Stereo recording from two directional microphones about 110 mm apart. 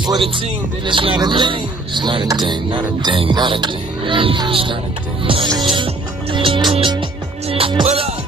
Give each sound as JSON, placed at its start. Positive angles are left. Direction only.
{"t": 0.2, "sound": "speech", "side_deg": -50}
{"t": 6.3, "sound": "music", "side_deg": -50}